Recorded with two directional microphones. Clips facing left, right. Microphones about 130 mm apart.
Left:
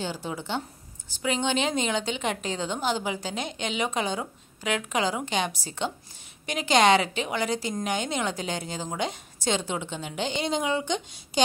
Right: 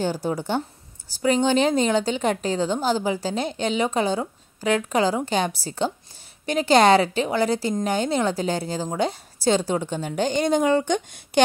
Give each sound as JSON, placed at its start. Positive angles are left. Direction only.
{"t": 0.0, "sound": "a woman's voice", "side_deg": -40}